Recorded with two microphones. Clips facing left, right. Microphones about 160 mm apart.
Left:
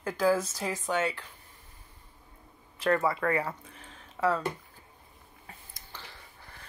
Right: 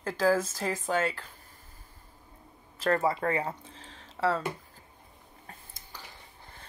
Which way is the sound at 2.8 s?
30° right (ahead or behind).